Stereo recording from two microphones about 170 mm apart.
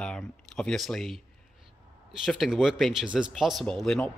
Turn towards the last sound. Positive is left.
turn(degrees=5)  # may be behind; listen again after turning